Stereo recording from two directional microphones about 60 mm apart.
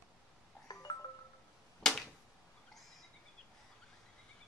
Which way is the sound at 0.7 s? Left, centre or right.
Left.